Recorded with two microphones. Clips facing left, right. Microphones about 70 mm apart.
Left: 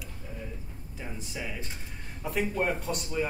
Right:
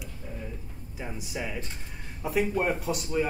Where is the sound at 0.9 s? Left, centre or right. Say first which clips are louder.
Right 3 dB; centre.